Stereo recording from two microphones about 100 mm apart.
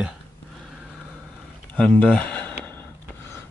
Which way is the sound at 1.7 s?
10° left (ahead or behind).